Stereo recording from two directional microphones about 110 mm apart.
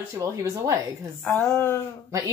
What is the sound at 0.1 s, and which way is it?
Speech, 30° right (ahead or behind).